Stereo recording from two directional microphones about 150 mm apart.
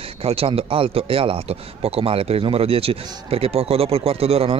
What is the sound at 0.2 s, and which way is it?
Speech, 40° right (ahead or behind).